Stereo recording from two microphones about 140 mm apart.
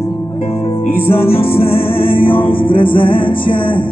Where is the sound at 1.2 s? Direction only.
45° left (ahead or behind).